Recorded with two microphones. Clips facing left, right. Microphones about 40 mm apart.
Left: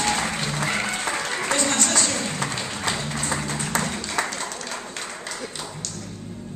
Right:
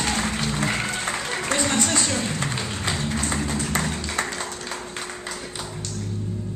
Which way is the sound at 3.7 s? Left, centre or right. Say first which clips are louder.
Even; right.